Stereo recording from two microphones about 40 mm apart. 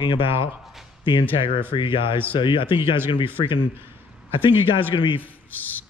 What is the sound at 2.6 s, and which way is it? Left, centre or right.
Speech, right.